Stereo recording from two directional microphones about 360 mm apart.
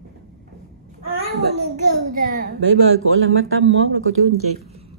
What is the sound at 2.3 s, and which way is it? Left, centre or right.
Speech, right.